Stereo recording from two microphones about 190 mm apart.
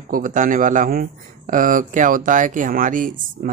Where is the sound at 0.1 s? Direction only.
45° right (ahead or behind).